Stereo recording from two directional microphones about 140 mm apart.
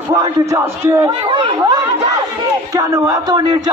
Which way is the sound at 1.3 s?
35° right (ahead or behind).